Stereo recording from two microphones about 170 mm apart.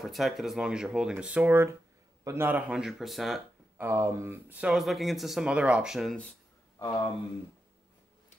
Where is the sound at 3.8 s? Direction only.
15° right (ahead or behind).